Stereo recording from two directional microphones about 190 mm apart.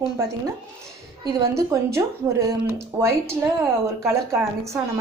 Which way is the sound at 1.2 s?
15° right (ahead or behind).